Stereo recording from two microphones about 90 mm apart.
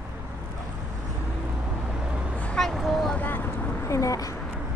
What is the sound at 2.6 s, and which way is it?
Vehicle, centre (ahead or behind).